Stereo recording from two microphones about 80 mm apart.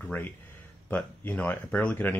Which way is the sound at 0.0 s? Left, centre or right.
Centre.